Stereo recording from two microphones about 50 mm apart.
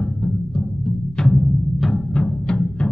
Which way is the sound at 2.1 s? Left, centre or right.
Centre.